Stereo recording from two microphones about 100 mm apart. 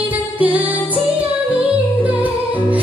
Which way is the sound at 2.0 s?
15° right (ahead or behind).